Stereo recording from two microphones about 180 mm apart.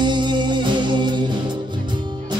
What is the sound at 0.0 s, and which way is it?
Music, 25° right (ahead or behind).